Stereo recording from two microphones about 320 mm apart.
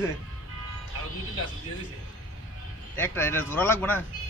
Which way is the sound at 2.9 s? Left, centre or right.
Centre.